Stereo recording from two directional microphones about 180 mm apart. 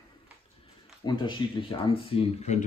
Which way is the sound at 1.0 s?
25° left (ahead or behind).